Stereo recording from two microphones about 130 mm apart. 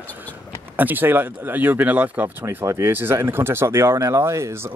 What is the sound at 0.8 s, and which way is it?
Speech, 15° right (ahead or behind).